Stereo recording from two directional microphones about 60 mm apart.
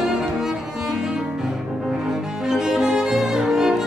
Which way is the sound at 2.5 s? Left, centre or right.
Centre.